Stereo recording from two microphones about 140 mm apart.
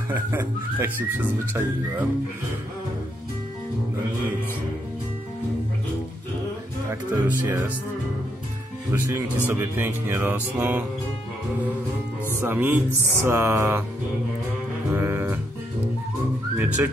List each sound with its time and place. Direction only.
0.1 s speech: 15° right (ahead or behind)
6.9 s speech: 20° right (ahead or behind)
8.9 s speech: 15° right (ahead or behind)
12.4 s speech: 15° right (ahead or behind)
14.9 s music: 15° right (ahead or behind)
16.5 s whistling: 10° right (ahead or behind)